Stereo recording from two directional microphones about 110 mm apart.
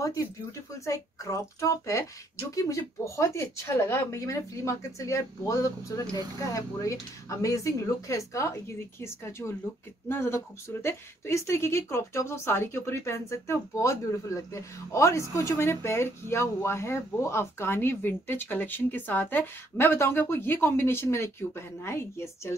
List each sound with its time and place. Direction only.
0.8 s speech: 30° left (ahead or behind)